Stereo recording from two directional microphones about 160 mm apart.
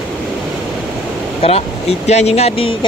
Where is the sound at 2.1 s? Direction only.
40° left (ahead or behind).